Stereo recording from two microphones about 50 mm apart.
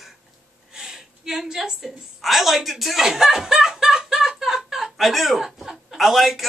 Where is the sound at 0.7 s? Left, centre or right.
Centre.